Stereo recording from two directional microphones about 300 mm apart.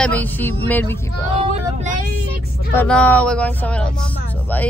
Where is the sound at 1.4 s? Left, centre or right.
Right.